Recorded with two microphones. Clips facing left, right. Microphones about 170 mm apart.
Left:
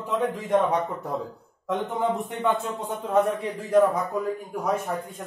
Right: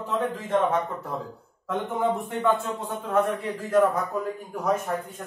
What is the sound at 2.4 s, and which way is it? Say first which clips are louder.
A man's voice: right 1 dB; 20° left (ahead or behind).